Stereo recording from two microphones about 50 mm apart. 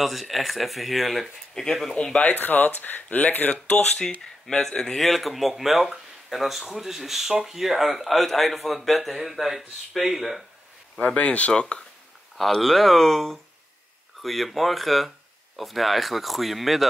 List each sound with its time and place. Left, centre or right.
0.0 s speech: centre
2.3 s speech: left
3.7 s speech: centre
11.1 s speech: left
12.4 s speech: centre